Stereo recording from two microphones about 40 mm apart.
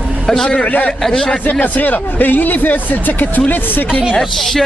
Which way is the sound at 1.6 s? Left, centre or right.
Left.